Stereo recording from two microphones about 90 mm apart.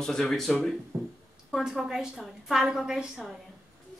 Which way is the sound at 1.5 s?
Centre (ahead or behind).